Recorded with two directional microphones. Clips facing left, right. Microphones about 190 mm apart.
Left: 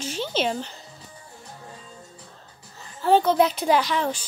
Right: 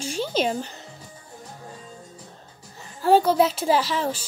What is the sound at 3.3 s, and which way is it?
Speech, 5° right (ahead or behind).